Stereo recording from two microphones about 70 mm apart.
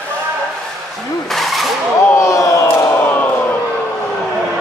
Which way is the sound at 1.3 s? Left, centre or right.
Centre.